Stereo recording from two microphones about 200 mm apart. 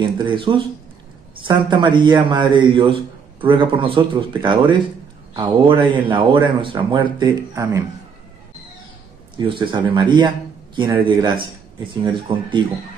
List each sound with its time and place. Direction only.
0.2 s a man's voice: 25° right (ahead or behind)
9.5 s a man's voice: 25° right (ahead or behind)